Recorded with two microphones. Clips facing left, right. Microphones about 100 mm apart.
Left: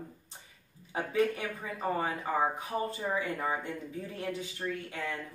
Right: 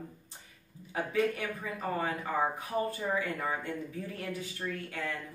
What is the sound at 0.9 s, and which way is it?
Speech, 25° left (ahead or behind).